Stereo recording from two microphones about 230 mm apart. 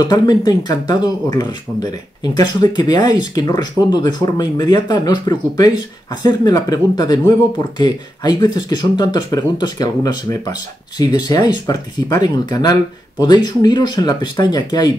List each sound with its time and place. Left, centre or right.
0.1 s speech: centre